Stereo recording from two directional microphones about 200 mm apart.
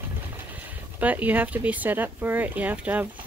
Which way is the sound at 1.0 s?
10° right (ahead or behind).